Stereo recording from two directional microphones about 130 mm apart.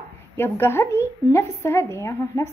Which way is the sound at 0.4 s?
15° left (ahead or behind).